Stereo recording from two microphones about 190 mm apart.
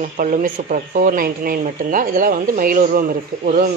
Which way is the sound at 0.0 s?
45° right (ahead or behind).